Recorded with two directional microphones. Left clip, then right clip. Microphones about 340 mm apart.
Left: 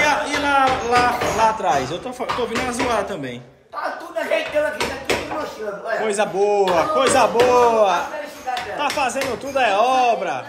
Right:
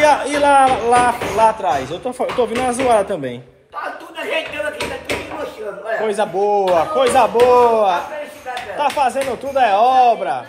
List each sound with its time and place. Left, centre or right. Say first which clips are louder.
0.0 s speech: right 5 dB; centre
6.1 s speech: right 1 dB; centre